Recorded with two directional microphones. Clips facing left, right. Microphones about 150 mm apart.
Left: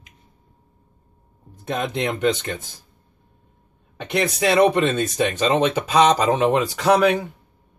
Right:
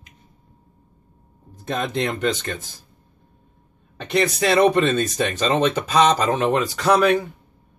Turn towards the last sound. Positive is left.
turn(degrees=15)  # may be behind; listen again after turning